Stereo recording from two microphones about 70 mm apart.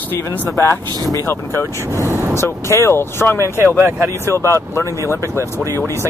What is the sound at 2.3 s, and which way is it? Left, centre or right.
Speech, left.